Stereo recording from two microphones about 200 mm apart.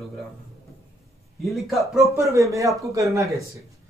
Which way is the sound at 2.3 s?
15° right (ahead or behind).